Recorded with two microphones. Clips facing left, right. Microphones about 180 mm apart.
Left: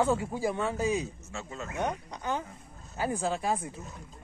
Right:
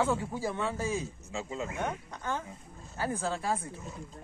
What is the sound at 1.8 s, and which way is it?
Speech, 15° left (ahead or behind).